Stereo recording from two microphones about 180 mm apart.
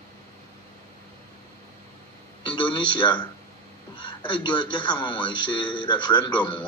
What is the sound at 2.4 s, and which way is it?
A man's voice, 25° left (ahead or behind).